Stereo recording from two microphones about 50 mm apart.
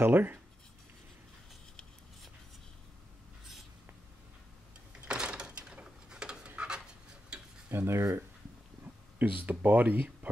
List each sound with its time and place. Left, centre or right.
0.0 s speech: right
5.0 s a sound: centre
7.3 s tick-tock: centre
7.7 s speech: right
9.2 s speech: right